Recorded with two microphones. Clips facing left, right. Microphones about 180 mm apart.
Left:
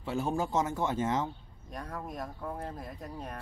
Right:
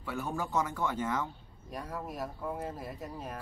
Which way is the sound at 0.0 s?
25° left (ahead or behind).